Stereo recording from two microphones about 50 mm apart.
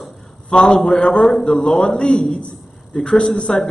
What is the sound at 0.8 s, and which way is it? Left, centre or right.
A man's voice, centre.